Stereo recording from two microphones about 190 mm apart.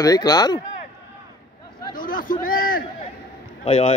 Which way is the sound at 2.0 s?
45° left (ahead or behind).